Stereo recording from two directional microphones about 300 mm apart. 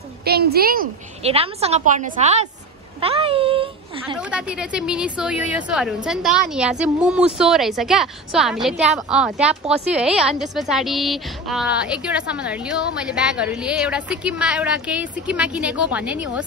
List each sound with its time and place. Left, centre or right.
0.2 s a woman's voice: right
4.2 s a woman's voice: centre